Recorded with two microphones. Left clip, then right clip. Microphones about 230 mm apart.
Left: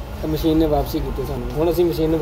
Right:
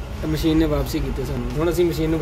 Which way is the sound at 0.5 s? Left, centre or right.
Right.